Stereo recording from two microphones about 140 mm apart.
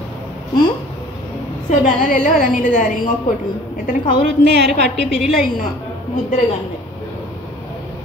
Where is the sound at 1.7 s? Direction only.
70° left (ahead or behind).